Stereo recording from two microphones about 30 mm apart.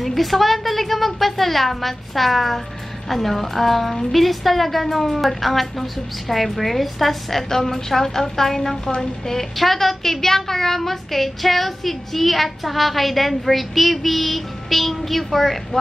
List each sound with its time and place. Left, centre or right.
0.0 s a woman's voice: centre